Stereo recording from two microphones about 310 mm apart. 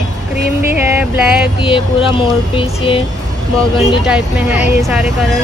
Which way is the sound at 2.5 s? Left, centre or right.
Centre.